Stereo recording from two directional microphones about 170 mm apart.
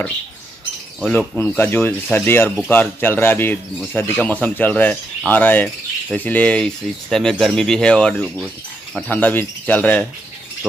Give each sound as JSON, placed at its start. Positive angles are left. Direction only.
{"t": 1.0, "sound": "speech", "side_deg": 5}